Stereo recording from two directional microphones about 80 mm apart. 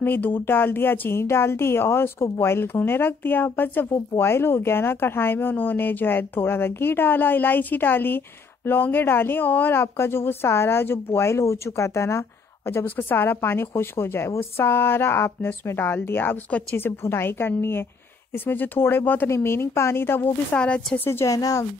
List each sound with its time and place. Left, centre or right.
0.0 s speech: left
20.5 s speech: centre
21.0 s speech: left
21.3 s speech: left